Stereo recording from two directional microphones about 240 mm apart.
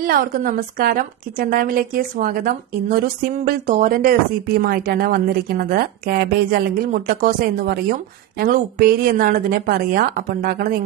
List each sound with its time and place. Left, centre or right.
0.0 s speech: right